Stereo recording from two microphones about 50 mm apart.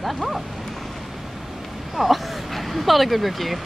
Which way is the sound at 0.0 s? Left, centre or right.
Centre.